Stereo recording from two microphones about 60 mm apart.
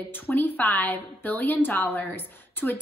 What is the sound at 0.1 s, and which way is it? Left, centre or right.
A woman's voice, left.